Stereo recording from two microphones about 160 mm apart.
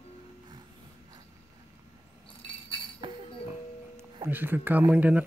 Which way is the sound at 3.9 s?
15° right (ahead or behind).